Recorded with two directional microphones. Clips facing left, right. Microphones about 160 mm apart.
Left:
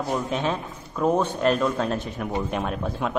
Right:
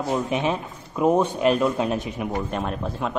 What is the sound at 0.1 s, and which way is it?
A man's voice, 10° right (ahead or behind).